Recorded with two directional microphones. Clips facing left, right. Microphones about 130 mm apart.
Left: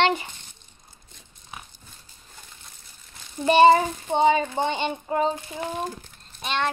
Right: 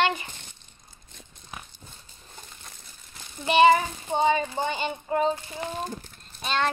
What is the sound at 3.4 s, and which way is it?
Speech, 35° left (ahead or behind).